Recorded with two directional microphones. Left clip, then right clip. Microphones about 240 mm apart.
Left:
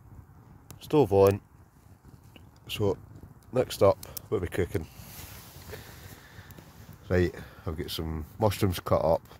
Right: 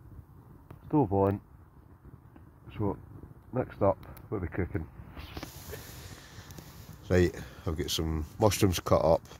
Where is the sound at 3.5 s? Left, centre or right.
Left.